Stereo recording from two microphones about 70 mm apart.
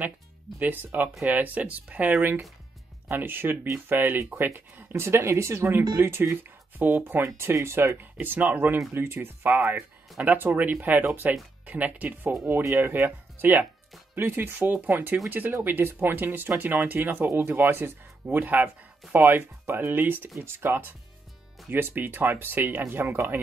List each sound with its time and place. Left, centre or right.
0.5 s speech: centre
1.2 s speech: right
7.2 s speech: right